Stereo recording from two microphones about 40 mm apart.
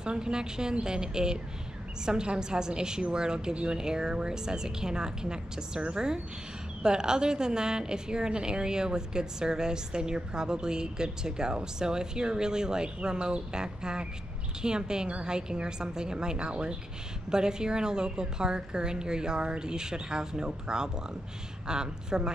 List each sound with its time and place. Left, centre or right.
0.0 s a woman's voice: right